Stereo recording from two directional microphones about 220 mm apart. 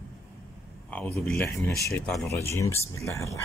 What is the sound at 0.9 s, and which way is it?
Speech, 5° left (ahead or behind).